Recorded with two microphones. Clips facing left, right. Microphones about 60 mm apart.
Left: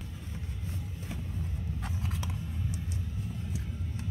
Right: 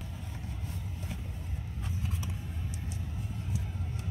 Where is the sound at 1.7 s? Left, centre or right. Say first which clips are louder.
Right 1 dB; left.